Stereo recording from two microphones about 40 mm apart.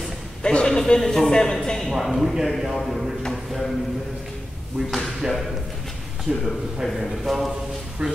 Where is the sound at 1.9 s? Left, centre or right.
Centre.